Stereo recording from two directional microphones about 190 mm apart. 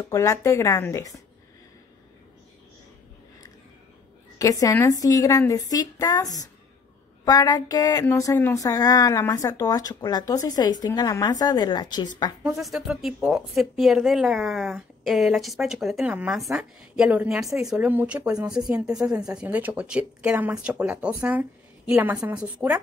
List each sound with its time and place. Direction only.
0.0 s speech: 15° left (ahead or behind)
4.4 s speech: 15° left (ahead or behind)
12.4 s speech: centre (ahead or behind)